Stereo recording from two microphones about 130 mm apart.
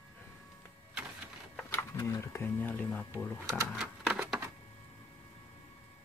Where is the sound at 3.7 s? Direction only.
5° right (ahead or behind).